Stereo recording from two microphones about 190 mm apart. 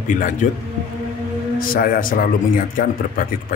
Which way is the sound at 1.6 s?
50° left (ahead or behind).